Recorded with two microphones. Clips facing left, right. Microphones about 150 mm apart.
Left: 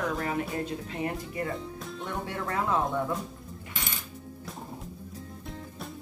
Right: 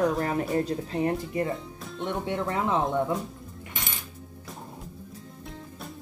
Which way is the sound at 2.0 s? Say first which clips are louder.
Right 5 dB; 20° right (ahead or behind).